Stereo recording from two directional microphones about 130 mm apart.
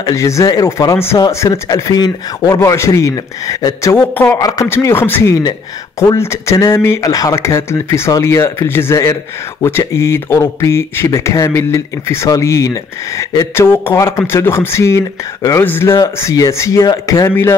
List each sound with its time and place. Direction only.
0.0 s speech: 25° left (ahead or behind)
3.9 s speech: 15° left (ahead or behind)
4.4 s speech: 25° left (ahead or behind)